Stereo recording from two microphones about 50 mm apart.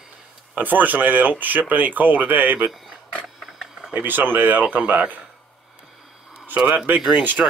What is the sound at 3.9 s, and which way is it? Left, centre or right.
Speech, right.